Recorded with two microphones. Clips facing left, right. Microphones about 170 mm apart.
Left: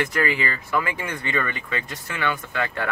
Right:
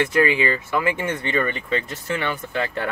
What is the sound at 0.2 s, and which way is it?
Speech, 25° right (ahead or behind).